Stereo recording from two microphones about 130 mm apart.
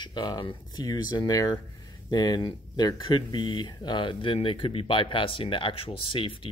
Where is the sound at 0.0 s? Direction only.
35° left (ahead or behind).